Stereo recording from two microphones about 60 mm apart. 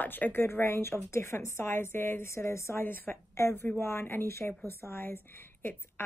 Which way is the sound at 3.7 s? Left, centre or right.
Left.